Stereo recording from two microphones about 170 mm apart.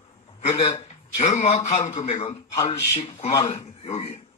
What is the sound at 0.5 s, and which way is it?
A man's voice, 40° left (ahead or behind).